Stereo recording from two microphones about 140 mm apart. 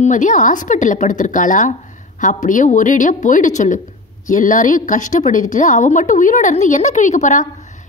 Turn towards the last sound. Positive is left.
turn(degrees=60)  # may be behind; listen again after turning